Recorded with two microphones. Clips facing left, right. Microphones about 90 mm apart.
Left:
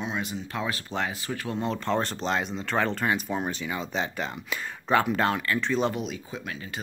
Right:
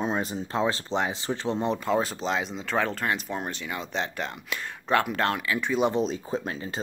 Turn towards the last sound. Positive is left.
turn(degrees=-30)  # may be behind; listen again after turning